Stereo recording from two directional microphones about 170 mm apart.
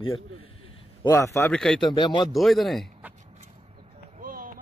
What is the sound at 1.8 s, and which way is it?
Speech, 25° left (ahead or behind).